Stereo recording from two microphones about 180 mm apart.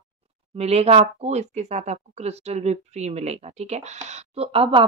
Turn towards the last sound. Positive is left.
turn(degrees=-30)  # may be behind; listen again after turning